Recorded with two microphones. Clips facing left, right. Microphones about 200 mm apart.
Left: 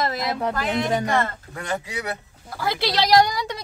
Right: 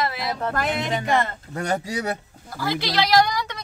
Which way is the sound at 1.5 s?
40° right (ahead or behind).